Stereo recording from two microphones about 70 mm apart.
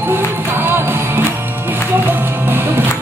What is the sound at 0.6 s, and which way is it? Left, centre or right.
Music, right.